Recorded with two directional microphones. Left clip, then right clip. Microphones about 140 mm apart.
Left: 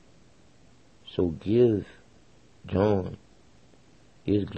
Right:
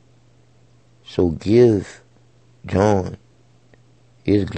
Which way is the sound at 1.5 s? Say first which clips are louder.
Right 8 dB; 40° right (ahead or behind).